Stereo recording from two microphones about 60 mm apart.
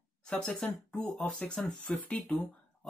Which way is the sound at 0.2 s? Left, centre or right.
Centre.